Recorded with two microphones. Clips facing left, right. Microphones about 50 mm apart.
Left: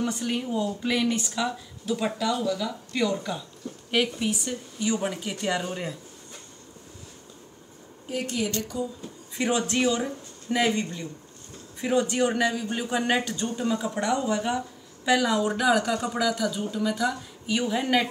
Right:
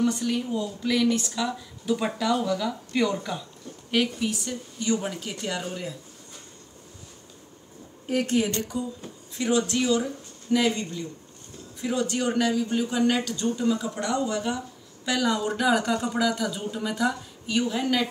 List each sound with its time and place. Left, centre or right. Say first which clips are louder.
0.0 s a man's voice: right 3 dB; centre
1.9 s speech: right 2 dB; centre
3.9 s speech: even; centre
8.5 s speech: right 1 dB; centre
9.4 s a man's voice: even; left; by 17.8 s centre